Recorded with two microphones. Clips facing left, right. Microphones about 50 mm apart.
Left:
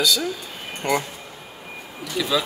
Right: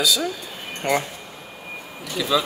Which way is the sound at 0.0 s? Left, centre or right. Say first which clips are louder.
Even; centre.